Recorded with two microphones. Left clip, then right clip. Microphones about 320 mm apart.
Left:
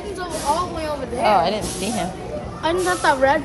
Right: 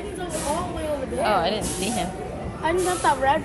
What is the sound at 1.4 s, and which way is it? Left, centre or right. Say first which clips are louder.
Speech: left 3 dB; left.